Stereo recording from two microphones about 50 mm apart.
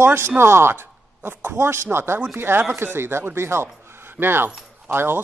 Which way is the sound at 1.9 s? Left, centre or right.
Right.